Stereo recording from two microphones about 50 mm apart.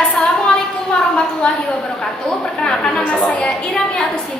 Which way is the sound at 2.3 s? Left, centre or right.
Centre.